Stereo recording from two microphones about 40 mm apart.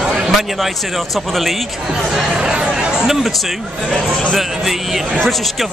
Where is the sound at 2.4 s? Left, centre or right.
Centre.